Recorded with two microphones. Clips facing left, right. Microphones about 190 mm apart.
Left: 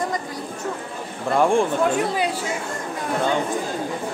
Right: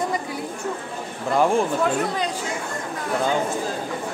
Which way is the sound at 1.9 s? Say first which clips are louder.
Left 2 dB; 5° left (ahead or behind).